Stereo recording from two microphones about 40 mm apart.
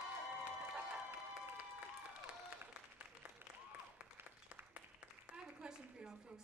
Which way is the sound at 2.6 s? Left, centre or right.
Right.